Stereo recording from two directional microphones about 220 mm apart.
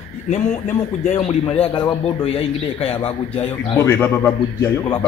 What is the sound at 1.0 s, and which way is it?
A man's voice, 30° left (ahead or behind).